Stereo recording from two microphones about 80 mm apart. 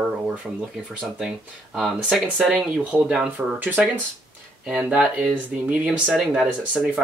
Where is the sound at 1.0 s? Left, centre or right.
Centre.